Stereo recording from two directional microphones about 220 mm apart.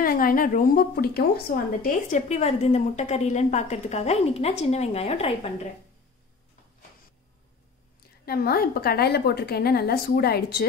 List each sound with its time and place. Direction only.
0.0 s a woman's voice: 40° left (ahead or behind)
8.3 s a woman's voice: 45° left (ahead or behind)